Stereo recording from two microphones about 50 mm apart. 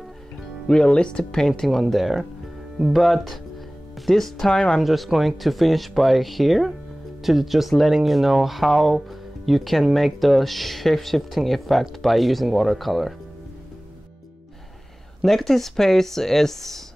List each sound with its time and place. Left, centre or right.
0.7 s speech: centre
1.7 s speech: centre
4.8 s speech: centre
15.2 s speech: centre